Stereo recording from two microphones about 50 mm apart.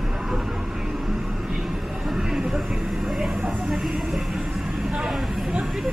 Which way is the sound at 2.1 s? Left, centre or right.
Centre.